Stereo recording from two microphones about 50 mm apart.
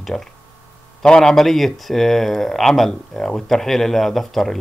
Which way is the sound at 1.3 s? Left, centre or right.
Centre.